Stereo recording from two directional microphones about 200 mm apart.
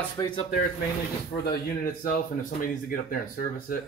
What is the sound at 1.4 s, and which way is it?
Speech, 45° left (ahead or behind).